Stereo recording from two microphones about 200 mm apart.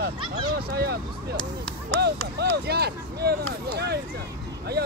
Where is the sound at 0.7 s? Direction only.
50° right (ahead or behind).